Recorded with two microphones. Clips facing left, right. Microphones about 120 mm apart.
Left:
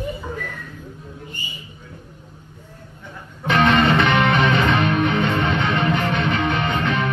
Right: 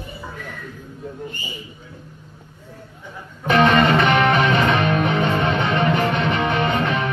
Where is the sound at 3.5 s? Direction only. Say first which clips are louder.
Right 1 dB; 40° right (ahead or behind).